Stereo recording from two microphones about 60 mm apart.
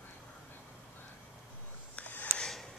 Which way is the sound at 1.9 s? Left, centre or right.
Left.